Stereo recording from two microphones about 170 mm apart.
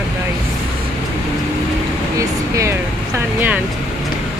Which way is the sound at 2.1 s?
15° right (ahead or behind).